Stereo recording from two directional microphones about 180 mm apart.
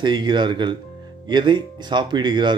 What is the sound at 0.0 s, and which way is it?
A man's voice, 25° right (ahead or behind).